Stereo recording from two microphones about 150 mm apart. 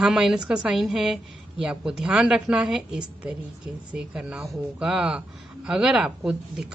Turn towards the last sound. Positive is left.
turn(degrees=-5)  # may be behind; listen again after turning